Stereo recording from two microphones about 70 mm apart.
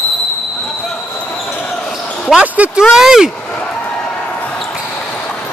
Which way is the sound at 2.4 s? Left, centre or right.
Right.